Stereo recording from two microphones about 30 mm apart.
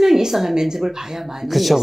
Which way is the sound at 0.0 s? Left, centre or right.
Centre.